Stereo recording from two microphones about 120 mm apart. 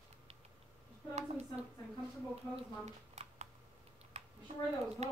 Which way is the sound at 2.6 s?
70° right (ahead or behind).